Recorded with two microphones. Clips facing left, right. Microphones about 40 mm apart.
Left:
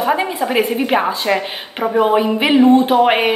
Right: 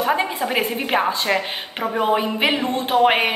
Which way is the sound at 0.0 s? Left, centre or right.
Centre.